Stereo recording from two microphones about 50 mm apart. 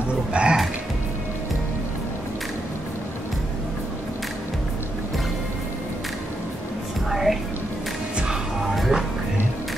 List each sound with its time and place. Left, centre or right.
0.3 s speech: right
7.1 s music: centre
8.7 s music: centre